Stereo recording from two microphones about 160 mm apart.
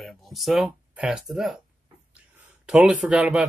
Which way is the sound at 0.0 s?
Centre (ahead or behind).